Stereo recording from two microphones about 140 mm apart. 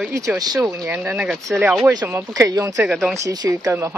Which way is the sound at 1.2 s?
Centre (ahead or behind).